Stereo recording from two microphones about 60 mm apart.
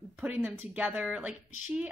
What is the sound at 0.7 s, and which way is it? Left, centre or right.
Speech, right.